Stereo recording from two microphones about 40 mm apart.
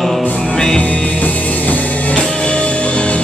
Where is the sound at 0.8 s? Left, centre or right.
Left.